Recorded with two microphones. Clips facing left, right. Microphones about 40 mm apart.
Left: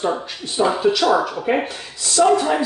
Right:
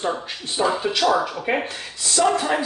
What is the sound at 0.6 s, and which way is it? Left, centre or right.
Speech, centre.